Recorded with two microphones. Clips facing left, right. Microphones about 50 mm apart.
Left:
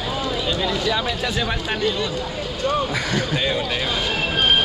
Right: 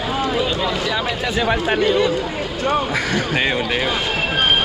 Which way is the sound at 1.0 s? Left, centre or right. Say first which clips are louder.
Right 3 dB; right.